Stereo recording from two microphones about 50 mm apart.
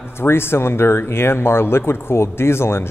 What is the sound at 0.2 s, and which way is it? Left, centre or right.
Speech, left.